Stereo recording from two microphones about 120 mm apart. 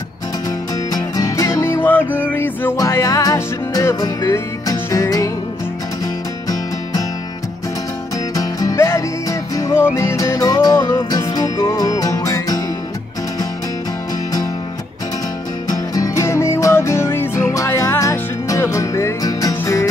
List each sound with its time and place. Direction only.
0.9 s music: 30° left (ahead or behind)
2.8 s music: 30° left (ahead or behind)
8.4 s music: 30° left (ahead or behind)
15.7 s music: 30° left (ahead or behind)